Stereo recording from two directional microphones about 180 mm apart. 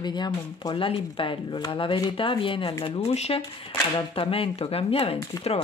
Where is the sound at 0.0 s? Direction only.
25° left (ahead or behind).